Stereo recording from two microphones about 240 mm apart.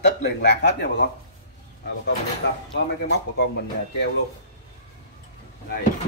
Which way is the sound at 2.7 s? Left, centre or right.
Left.